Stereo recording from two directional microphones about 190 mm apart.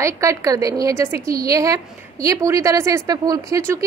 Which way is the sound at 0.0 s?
15° right (ahead or behind).